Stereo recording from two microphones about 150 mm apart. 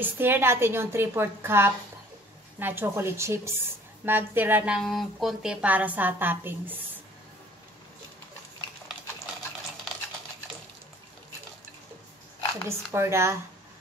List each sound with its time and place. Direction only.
0.0 s a woman's voice: 15° right (ahead or behind)
4.7 s a woman's voice: centre (ahead or behind)
12.6 s a woman's voice: 20° right (ahead or behind)